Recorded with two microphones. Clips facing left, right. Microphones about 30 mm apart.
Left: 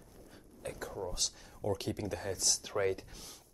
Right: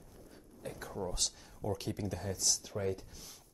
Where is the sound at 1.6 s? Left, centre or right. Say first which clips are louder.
Left 2 dB; left.